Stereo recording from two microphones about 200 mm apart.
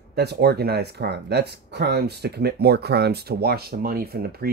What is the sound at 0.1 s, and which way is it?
Speech, 55° right (ahead or behind).